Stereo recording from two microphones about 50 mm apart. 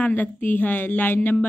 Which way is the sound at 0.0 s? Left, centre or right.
Left.